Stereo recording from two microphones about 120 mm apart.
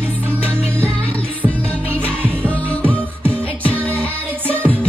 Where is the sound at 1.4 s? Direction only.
10° left (ahead or behind).